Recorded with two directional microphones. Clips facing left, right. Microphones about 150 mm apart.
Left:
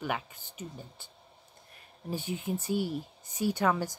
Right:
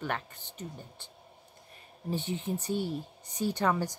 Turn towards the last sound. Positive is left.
turn(degrees=5)  # may be behind; listen again after turning